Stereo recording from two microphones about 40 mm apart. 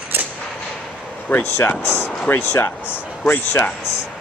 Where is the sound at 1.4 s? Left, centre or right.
Left.